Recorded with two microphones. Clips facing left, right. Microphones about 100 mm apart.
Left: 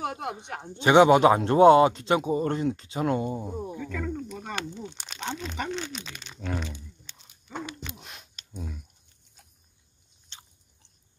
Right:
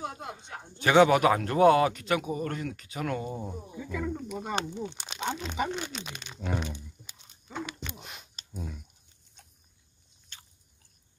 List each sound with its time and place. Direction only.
0.0 s speech: 70° left (ahead or behind)
0.7 s speech: 20° left (ahead or behind)
3.3 s speech: 5° left (ahead or behind)
3.7 s speech: 10° right (ahead or behind)
7.9 s speech: centre (ahead or behind)
10.3 s biting: 25° left (ahead or behind)